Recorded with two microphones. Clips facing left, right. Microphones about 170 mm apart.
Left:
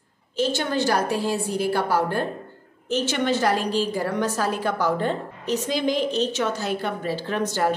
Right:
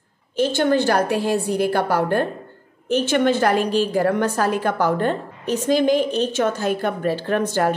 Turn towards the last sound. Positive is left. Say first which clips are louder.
# right 4 dB
turn(degrees=-50)  # may be behind; listen again after turning